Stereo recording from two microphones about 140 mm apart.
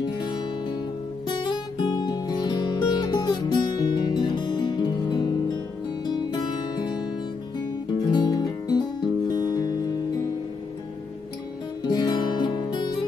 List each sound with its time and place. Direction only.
1.3 s music: 35° left (ahead or behind)
8.1 s music: 30° left (ahead or behind)
11.9 s music: 30° left (ahead or behind)